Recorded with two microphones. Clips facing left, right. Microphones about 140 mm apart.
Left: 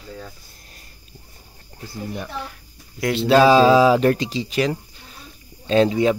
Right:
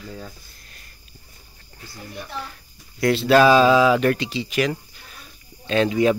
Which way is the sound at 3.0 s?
20° left (ahead or behind).